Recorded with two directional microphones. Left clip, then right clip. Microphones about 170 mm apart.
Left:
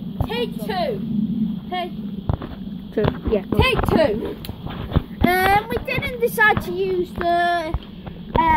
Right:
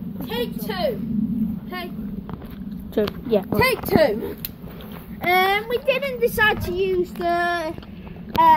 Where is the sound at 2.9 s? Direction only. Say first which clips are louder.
Even; 15° right (ahead or behind).